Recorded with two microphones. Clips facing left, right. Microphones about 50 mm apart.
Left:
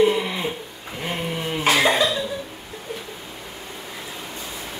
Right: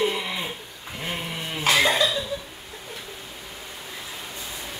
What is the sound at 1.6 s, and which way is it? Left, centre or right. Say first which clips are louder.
Cough: left 2 dB; left.